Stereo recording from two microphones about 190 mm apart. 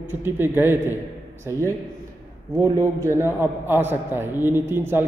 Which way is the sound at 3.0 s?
15° right (ahead or behind).